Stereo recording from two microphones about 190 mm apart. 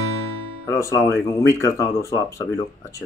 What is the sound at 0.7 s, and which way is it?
Speech, 15° left (ahead or behind).